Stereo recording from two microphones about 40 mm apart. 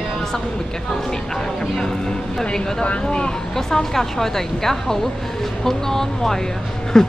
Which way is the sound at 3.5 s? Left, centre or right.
Centre.